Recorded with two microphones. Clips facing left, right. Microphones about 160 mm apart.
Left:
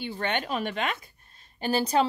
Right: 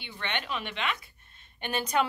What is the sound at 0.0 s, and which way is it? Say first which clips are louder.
A woman's voice: left 6 dB; 40° left (ahead or behind).